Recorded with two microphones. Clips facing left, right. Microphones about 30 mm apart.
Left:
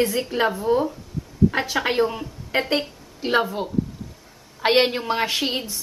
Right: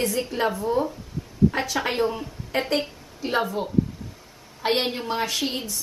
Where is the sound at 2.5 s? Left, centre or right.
Left.